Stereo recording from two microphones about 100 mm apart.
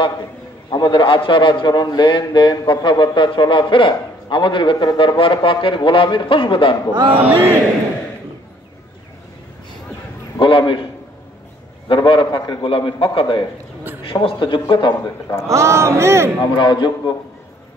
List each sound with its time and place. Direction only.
0.7 s a man's voice: 45° left (ahead or behind)
7.1 s speech: 15° right (ahead or behind)
10.4 s a man's voice: 60° left (ahead or behind)
11.9 s a man's voice: 55° left (ahead or behind)
15.4 s speech: 30° right (ahead or behind)
16.5 s a man's voice: 50° left (ahead or behind)